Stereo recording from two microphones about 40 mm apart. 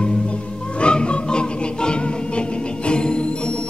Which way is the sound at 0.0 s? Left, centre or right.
Left.